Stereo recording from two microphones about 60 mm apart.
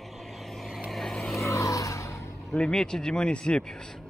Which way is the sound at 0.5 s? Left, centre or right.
Centre.